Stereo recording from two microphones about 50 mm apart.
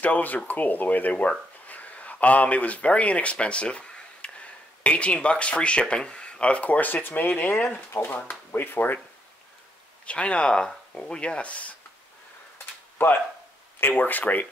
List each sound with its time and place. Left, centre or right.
0.0 s speech: left
10.0 s speech: left
13.0 s speech: left